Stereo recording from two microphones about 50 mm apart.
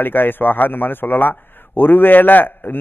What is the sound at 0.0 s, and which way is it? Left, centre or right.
A man's voice, left.